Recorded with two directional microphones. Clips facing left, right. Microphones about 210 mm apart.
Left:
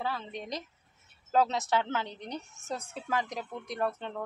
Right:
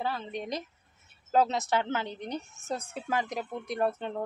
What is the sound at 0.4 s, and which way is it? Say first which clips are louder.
A woman's voice: right 3 dB; 5° right (ahead or behind).